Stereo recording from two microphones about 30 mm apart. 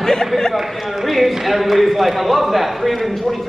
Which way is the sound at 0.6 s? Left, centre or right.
Centre.